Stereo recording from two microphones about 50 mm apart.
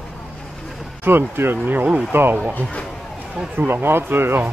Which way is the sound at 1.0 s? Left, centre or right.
Right.